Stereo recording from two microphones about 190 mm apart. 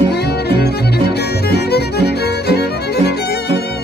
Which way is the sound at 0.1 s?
60° left (ahead or behind).